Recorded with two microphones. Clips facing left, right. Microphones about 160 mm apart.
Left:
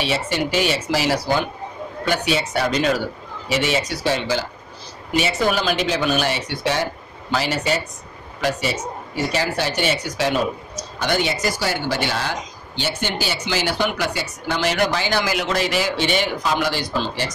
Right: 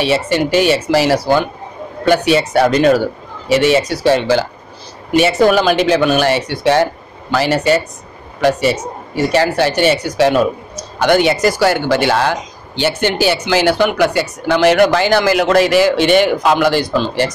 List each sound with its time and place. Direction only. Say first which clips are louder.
0.0 s speech: right 7 dB; 65° right (ahead or behind)